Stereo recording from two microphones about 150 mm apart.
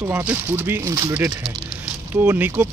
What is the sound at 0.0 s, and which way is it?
Speech, 15° right (ahead or behind).